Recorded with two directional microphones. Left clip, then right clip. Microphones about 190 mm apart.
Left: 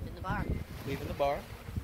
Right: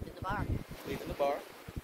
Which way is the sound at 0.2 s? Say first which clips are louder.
Even; 10° right (ahead or behind).